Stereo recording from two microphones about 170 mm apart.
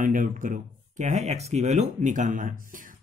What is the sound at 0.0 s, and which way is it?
Speech, 50° right (ahead or behind).